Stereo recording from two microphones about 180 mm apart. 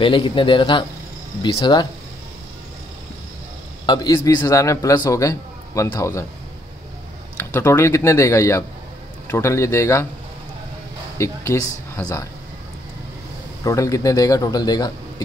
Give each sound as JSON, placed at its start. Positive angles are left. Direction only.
{"t": 0.0, "sound": "speech", "side_deg": 25}
{"t": 3.8, "sound": "a man's voice", "side_deg": 25}
{"t": 7.3, "sound": "a man's voice", "side_deg": 15}
{"t": 11.1, "sound": "speech", "side_deg": 15}
{"t": 13.7, "sound": "speech", "side_deg": 20}